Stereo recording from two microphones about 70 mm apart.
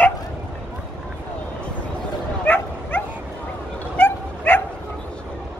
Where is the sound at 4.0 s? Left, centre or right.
Left.